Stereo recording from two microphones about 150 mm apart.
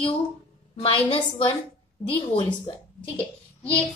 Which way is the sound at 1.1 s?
35° left (ahead or behind).